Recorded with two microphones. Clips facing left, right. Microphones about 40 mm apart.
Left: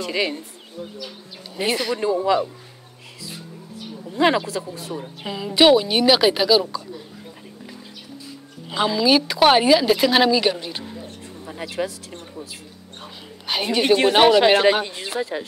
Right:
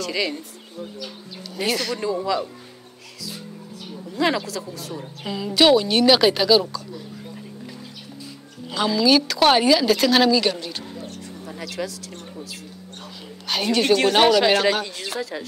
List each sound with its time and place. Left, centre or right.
0.0 s speech: left
0.7 s speech: centre
1.6 s speech: centre
4.1 s speech: left
4.9 s speech: centre
8.6 s speech: centre
10.9 s a sound: centre
11.5 s speech: left
13.5 s speech: centre